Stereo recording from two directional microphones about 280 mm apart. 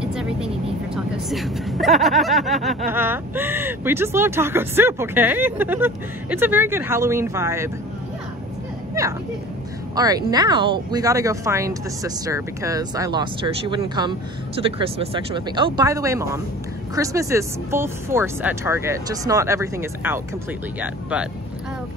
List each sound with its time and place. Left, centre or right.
0.0 s vehicle: centre
0.9 s speech: centre
9.0 s speech: centre